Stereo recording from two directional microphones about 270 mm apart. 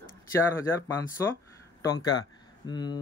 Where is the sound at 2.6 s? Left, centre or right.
Centre.